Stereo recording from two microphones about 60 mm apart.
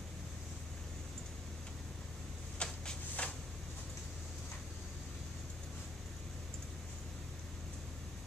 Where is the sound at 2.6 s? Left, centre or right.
Centre.